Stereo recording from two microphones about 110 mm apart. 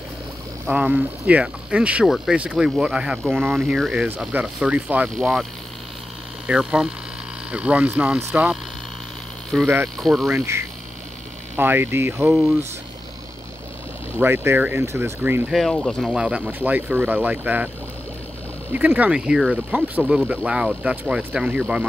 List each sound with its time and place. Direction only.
0.7 s speech: 10° right (ahead or behind)
5.1 s speech: centre (ahead or behind)
8.2 s speech: 20° right (ahead or behind)
9.5 s speech: 5° right (ahead or behind)
10.3 s speech: 25° right (ahead or behind)
12.3 s speech: centre (ahead or behind)
14.1 s speech: 20° right (ahead or behind)
15.5 s speech: centre (ahead or behind); by 17.6 s 15° right (ahead or behind)
18.7 s speech: 15° right (ahead or behind)